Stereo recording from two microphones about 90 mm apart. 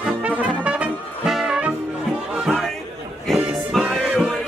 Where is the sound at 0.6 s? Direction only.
15° right (ahead or behind).